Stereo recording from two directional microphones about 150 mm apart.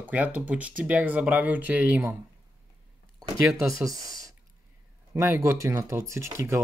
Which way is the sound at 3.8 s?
25° right (ahead or behind).